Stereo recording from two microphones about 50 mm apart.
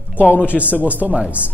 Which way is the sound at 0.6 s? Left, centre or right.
Right.